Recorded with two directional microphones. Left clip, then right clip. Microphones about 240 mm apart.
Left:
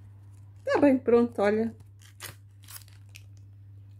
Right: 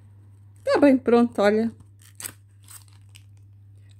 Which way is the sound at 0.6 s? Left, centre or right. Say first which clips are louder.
Right 5 dB; right.